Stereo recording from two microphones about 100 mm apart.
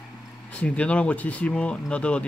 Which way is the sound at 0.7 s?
10° left (ahead or behind).